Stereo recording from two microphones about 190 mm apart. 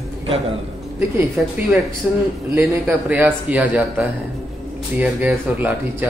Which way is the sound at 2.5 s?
10° right (ahead or behind).